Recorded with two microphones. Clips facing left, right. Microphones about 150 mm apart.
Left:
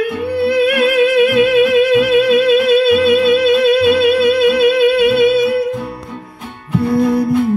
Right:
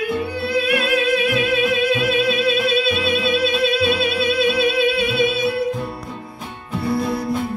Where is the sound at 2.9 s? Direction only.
50° left (ahead or behind).